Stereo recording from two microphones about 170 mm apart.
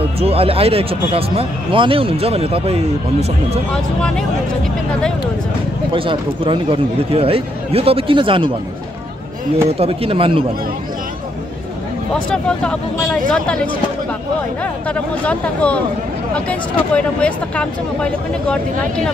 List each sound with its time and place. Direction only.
0.2 s speech: 35° right (ahead or behind)
5.9 s speech: 30° right (ahead or behind)
9.7 s speech: 35° right (ahead or behind)
12.1 s speech: 5° left (ahead or behind)
15.2 s speech: 5° left (ahead or behind)